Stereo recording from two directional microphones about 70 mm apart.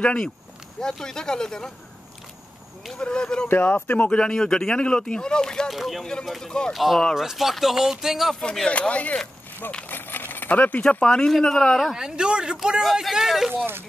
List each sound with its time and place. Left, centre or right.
0.0 s speech: centre
3.0 s speech: centre
3.4 s speech: left
4.2 s speech: centre
5.7 s speech: centre
8.4 s speech: centre
9.8 s a sound: left
10.8 s speech: centre
12.0 s speech: centre